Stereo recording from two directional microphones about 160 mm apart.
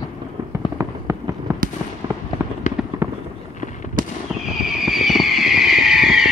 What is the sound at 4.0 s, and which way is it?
Fireworks, 60° right (ahead or behind).